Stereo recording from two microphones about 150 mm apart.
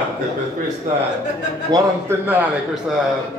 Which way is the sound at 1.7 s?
15° right (ahead or behind).